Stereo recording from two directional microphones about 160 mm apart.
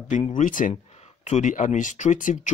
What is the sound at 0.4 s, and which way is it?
Speech, 55° left (ahead or behind).